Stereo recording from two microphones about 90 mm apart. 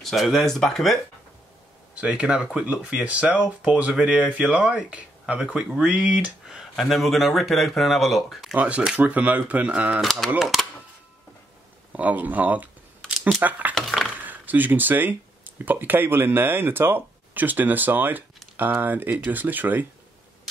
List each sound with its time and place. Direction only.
0.0 s speech: centre (ahead or behind)
2.0 s speech: 15° right (ahead or behind)
8.5 s speech: 15° right (ahead or behind)
10.0 s speech: centre (ahead or behind)
11.9 s speech: 15° right (ahead or behind)
13.7 s a sound: centre (ahead or behind)
14.2 s speech: 20° right (ahead or behind)